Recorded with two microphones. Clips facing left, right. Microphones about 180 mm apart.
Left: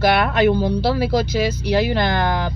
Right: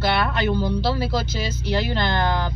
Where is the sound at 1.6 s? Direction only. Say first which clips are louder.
Left 2 dB; 15° left (ahead or behind).